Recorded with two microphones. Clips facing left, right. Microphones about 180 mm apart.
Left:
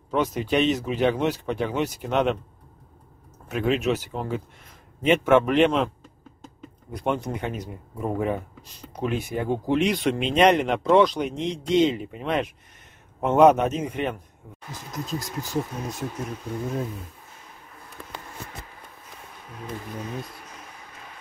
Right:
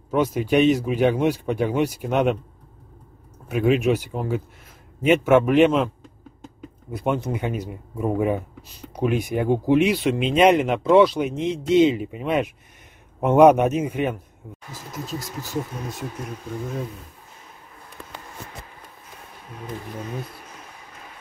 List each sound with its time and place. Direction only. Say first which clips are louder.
0.1 s speech: right 3 dB; 10° right (ahead or behind)
3.4 s speech: right 4 dB; 10° right (ahead or behind)
6.9 s speech: right 2 dB; 5° right (ahead or behind)